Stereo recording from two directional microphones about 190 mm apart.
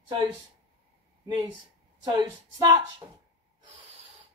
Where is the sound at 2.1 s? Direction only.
20° right (ahead or behind).